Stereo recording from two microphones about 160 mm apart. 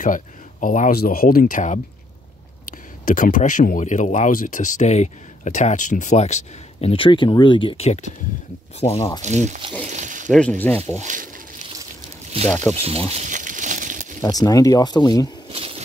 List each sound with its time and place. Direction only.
0.0 s speech: 55° left (ahead or behind)
3.1 s speech: 55° left (ahead or behind)
8.9 s speech: 20° left (ahead or behind)
9.2 s speech: 45° right (ahead or behind)
9.8 s a sound: 50° right (ahead or behind)
10.6 s speech: 10° left (ahead or behind)
11.0 s speech: 55° right (ahead or behind)
12.4 s speech: 10° left (ahead or behind)
12.7 s speech: 40° right (ahead or behind)
13.1 s crumpling: 50° right (ahead or behind)
14.2 s speech: 25° left (ahead or behind)
15.5 s a sound: 35° right (ahead or behind)